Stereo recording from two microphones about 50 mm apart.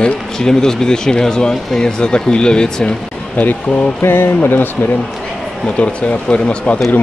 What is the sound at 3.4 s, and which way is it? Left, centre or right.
Speech, left.